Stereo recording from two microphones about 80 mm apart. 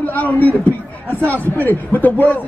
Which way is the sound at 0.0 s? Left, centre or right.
Left.